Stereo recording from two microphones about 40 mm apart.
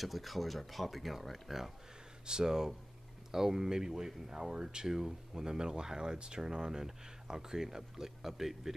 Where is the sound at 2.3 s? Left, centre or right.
Centre.